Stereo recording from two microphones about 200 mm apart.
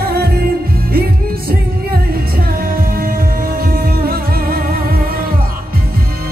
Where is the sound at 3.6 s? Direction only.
50° right (ahead or behind).